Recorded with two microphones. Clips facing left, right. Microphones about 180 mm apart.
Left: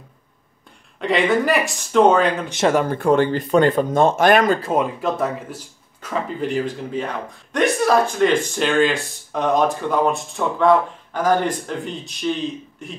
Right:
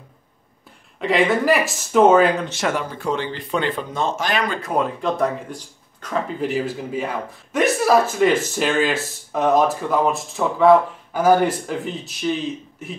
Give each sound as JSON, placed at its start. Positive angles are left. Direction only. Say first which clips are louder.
{"t": 0.9, "sound": "a man's voice", "louder": "even", "side_deg": 0}
{"t": 2.7, "sound": "speech", "louder": "left 7 dB", "side_deg": 55}
{"t": 4.6, "sound": "speech", "louder": "left 2 dB", "side_deg": 25}
{"t": 5.0, "sound": "a man's voice", "louder": "right 1 dB", "side_deg": 5}